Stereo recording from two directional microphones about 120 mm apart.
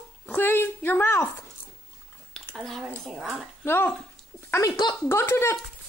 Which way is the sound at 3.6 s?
15° left (ahead or behind).